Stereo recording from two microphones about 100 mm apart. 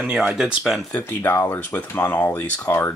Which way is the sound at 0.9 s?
20° left (ahead or behind).